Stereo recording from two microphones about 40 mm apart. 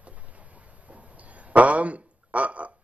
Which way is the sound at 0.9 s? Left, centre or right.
Right.